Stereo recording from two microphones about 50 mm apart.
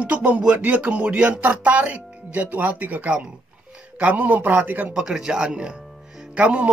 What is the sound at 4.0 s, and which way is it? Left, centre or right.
Speech, right.